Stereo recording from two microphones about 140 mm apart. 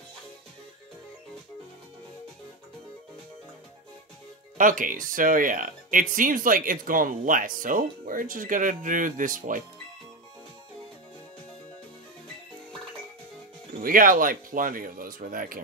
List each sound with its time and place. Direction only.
4.6 s speech: 70° right (ahead or behind)
13.7 s speech: 90° right